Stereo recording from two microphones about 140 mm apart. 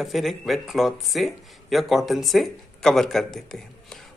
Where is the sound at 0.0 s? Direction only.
Centre (ahead or behind).